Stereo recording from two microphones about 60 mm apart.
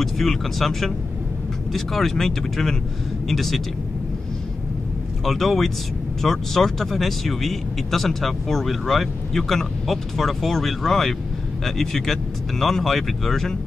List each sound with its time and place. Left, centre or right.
0.0 s speech: centre
5.2 s speech: centre